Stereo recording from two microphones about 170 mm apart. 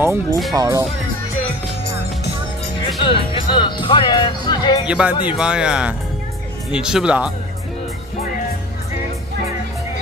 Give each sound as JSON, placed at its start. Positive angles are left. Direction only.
{"t": 0.0, "sound": "speech", "side_deg": -10}
{"t": 3.0, "sound": "speech", "side_deg": 30}
{"t": 4.8, "sound": "speech", "side_deg": -5}